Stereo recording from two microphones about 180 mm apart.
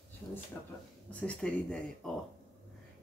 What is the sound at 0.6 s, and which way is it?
Speech, 15° left (ahead or behind).